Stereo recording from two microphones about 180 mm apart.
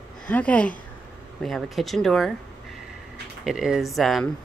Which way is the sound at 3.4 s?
5° right (ahead or behind).